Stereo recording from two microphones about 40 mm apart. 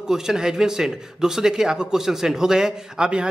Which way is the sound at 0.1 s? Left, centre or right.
Centre.